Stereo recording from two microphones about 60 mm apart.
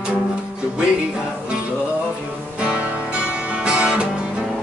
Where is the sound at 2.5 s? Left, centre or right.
Centre.